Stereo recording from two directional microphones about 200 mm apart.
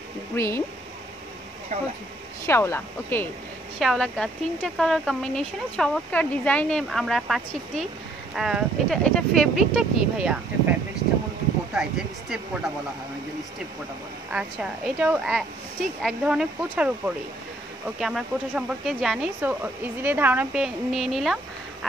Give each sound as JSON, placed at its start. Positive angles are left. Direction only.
{"t": 0.3, "sound": "speech", "side_deg": 10}
{"t": 1.7, "sound": "speech", "side_deg": -35}
{"t": 2.4, "sound": "speech", "side_deg": 10}
{"t": 3.8, "sound": "speech", "side_deg": 0}
{"t": 11.7, "sound": "speech", "side_deg": -5}
{"t": 14.3, "sound": "speech", "side_deg": -5}